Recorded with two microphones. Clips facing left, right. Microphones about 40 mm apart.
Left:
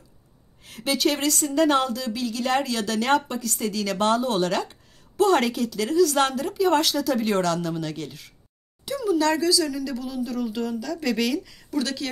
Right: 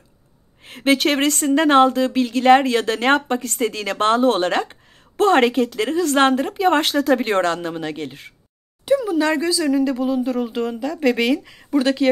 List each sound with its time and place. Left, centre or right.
0.7 s speech: right